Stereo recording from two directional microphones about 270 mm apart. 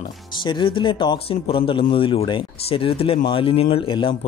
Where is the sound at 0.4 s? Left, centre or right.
Centre.